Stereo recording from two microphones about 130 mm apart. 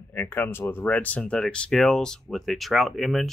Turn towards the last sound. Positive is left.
turn(degrees=0)  # may be behind; listen again after turning